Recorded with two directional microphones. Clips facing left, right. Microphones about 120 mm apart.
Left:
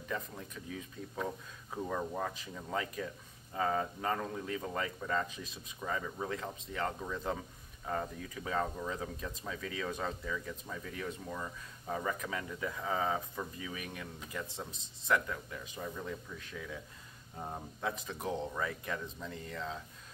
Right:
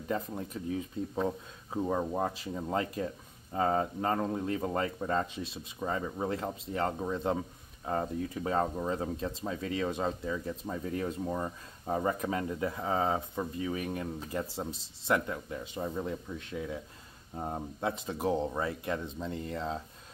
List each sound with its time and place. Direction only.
0.1 s speech: 30° right (ahead or behind)